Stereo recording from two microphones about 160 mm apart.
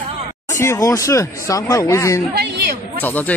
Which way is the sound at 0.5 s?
20° left (ahead or behind).